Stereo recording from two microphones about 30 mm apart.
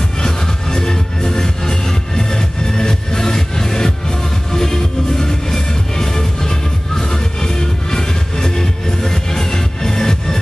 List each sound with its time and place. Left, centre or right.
0.2 s music: centre